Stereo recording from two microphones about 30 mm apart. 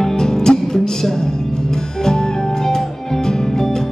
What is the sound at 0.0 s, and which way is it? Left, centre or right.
Music, centre.